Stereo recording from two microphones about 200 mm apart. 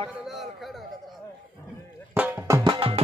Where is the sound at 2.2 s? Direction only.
10° right (ahead or behind); by 3.0 s 25° right (ahead or behind).